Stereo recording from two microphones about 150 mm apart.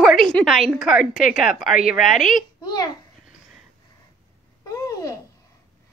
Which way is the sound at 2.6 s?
25° left (ahead or behind).